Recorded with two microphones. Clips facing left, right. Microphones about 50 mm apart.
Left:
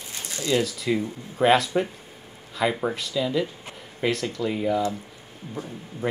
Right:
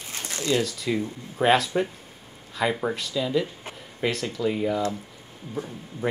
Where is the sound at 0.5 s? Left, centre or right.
Centre.